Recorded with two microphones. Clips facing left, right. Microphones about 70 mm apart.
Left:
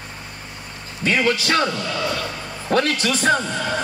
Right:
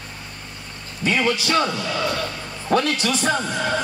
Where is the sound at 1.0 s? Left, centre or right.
Left.